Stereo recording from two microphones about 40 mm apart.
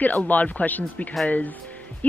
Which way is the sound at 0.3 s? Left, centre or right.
Left.